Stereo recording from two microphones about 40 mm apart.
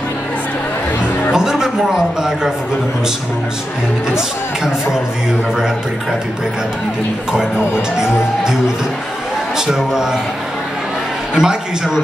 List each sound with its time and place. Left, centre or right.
1.3 s a man's voice: centre
7.3 s speech: centre
9.7 s speech: centre
11.3 s speech: centre